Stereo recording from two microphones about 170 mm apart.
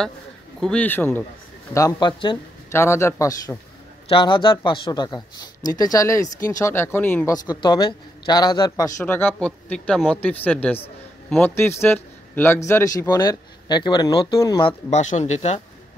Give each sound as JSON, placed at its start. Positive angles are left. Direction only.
{"t": 0.6, "sound": "a man's voice", "side_deg": 5}
{"t": 2.7, "sound": "a man's voice", "side_deg": 15}
{"t": 9.0, "sound": "a man's voice", "side_deg": 10}